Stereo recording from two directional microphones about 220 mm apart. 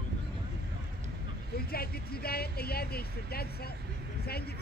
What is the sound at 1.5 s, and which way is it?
Speech, 45° left (ahead or behind).